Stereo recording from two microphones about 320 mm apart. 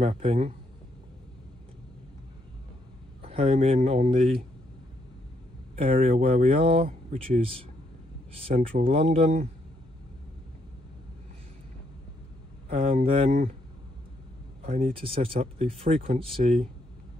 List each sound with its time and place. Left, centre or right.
0.0 s speech: centre
3.2 s speech: centre
5.8 s speech: centre
8.5 s speech: right
12.6 s speech: right
14.6 s speech: centre